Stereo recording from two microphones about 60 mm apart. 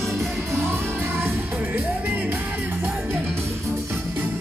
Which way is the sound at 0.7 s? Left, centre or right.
Right.